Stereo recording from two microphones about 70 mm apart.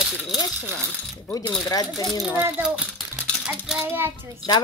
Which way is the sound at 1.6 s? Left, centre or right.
Left.